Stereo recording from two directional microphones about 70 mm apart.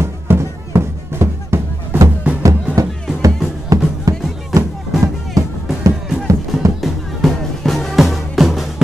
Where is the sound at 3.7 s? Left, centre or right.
Right.